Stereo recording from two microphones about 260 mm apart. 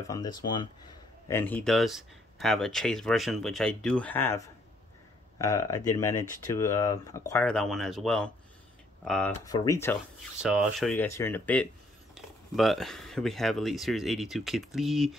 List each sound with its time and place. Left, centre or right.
0.0 s speech: centre
10.4 s speech: centre